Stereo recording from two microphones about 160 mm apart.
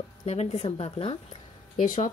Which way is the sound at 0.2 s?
40° left (ahead or behind).